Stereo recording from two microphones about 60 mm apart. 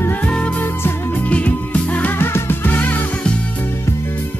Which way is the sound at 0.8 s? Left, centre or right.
Left.